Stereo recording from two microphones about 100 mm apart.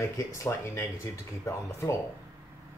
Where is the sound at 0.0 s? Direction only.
30° left (ahead or behind).